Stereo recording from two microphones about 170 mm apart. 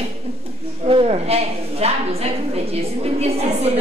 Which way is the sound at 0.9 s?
35° right (ahead or behind).